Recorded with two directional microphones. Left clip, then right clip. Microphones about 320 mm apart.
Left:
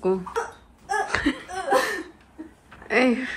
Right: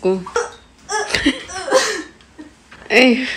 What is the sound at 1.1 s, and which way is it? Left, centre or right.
Laughter, centre.